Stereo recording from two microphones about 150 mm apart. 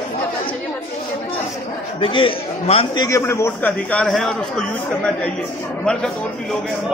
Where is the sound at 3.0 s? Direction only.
20° left (ahead or behind).